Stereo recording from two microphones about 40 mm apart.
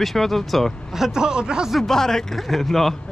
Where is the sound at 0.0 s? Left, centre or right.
Centre.